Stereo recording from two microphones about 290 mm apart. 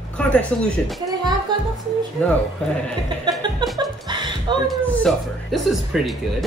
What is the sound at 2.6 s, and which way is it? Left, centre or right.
Speech, centre.